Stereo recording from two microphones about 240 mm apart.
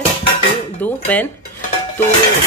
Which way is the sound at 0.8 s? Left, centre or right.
Centre.